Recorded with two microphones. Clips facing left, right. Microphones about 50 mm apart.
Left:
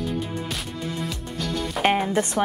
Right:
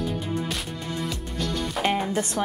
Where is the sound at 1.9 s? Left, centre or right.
Centre.